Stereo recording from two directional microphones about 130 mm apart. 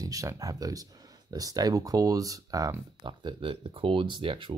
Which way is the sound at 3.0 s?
40° right (ahead or behind).